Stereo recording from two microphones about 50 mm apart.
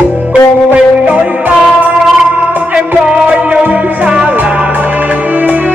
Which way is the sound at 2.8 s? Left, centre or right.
Right.